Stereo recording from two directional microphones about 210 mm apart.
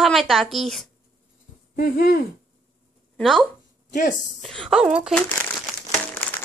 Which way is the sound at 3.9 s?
40° left (ahead or behind).